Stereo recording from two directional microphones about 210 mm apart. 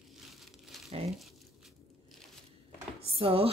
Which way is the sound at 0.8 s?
30° right (ahead or behind).